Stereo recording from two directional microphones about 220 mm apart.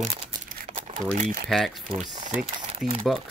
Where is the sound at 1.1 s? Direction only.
35° right (ahead or behind).